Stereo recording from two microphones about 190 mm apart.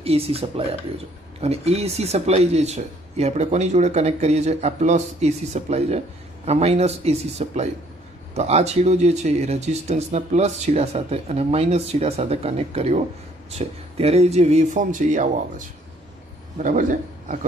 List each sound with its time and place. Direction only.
0.0 s a man's voice: 30° right (ahead or behind)